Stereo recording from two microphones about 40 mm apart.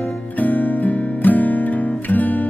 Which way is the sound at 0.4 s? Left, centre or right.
Left.